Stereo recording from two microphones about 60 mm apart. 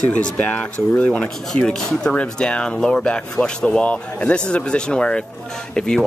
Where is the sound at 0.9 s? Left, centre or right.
Left.